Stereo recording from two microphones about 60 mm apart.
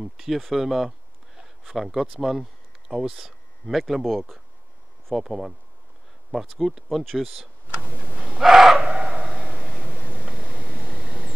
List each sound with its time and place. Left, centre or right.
0.0 s speech: centre
5.1 s speech: centre
6.6 s speech: centre
7.6 s speech: right
8.4 s gasp: centre
8.8 s a sound: right